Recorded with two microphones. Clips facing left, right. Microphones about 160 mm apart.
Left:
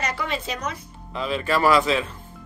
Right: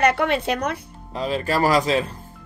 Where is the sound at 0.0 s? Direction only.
60° right (ahead or behind).